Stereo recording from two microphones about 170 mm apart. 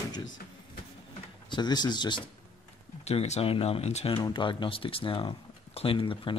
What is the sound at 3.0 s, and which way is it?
Speech, 40° left (ahead or behind).